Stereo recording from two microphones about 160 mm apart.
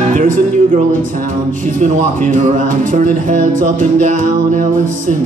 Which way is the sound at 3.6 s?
55° right (ahead or behind).